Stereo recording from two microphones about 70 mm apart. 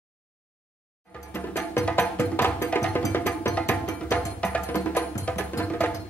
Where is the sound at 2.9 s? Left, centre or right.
Left.